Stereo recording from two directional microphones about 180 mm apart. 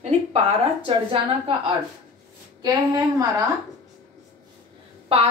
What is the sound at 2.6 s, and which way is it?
Speech, 20° right (ahead or behind).